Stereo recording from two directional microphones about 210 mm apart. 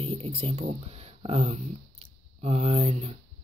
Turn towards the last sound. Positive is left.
turn(degrees=-30)  # may be behind; listen again after turning